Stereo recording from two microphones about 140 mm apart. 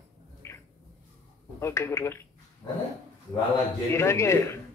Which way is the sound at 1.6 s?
20° left (ahead or behind).